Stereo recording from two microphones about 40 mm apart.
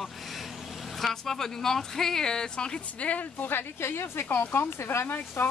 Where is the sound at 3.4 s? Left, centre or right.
Left.